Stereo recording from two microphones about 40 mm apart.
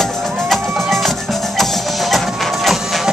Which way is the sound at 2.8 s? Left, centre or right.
Centre.